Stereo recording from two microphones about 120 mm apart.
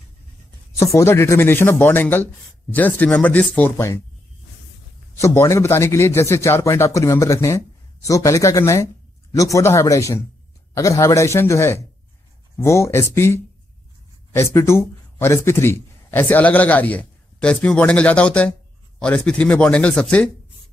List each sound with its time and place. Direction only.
0.7 s a man's voice: 25° left (ahead or behind)
5.2 s a man's voice: 25° left (ahead or behind)